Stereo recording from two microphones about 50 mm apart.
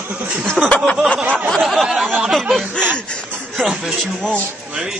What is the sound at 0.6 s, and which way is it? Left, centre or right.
Speech, centre.